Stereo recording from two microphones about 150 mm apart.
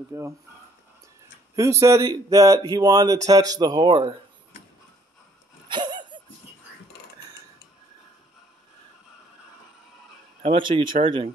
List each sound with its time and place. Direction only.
0.1 s speech: 20° right (ahead or behind)
1.5 s speech: 20° right (ahead or behind)
5.7 s a sound: 30° right (ahead or behind)
10.4 s a man's voice: 35° right (ahead or behind)